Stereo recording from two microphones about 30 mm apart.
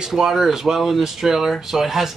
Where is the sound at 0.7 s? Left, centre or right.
Centre.